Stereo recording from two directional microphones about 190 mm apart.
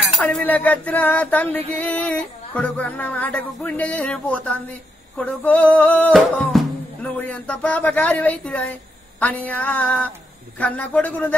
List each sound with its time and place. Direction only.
0.2 s music: 5° left (ahead or behind)